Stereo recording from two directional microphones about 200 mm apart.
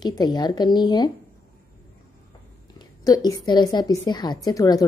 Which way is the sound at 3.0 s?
20° left (ahead or behind).